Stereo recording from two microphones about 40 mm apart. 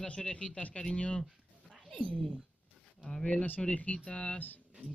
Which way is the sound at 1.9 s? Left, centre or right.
Centre.